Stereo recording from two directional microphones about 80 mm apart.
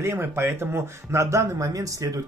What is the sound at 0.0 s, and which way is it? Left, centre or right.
Speech, right.